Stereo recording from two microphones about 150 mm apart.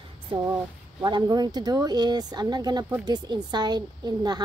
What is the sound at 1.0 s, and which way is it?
Speech, 30° right (ahead or behind).